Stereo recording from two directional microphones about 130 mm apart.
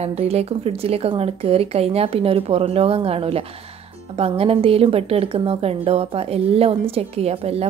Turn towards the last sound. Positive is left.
turn(degrees=-50)  # may be behind; listen again after turning